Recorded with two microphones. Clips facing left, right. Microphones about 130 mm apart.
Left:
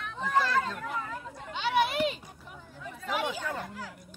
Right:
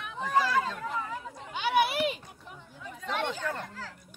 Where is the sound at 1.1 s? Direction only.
10° right (ahead or behind).